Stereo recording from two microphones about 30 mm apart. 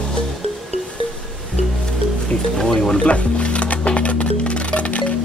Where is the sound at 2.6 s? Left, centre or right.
Left.